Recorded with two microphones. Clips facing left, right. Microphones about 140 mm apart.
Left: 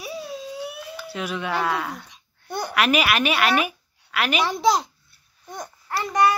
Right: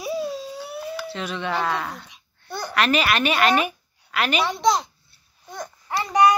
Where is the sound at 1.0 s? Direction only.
10° left (ahead or behind).